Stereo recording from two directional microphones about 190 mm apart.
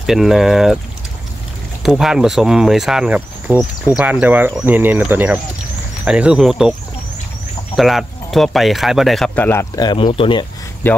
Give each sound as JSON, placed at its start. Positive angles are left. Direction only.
{"t": 0.0, "sound": "speech", "side_deg": 0}
{"t": 1.8, "sound": "speech", "side_deg": 0}
{"t": 7.7, "sound": "speech", "side_deg": 0}
{"t": 10.8, "sound": "speech", "side_deg": 10}